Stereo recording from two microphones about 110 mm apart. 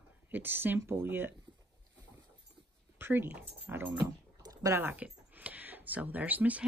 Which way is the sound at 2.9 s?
20° right (ahead or behind).